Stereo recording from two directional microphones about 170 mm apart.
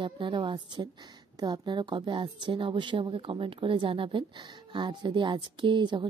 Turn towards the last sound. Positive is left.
turn(degrees=-25)  # may be behind; listen again after turning